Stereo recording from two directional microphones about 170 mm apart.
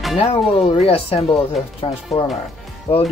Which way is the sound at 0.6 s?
35° left (ahead or behind).